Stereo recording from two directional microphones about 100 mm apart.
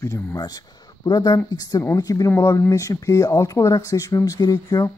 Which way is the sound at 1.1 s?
45° left (ahead or behind).